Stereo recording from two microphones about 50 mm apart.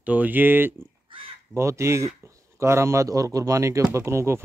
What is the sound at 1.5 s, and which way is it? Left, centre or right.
Speech, right.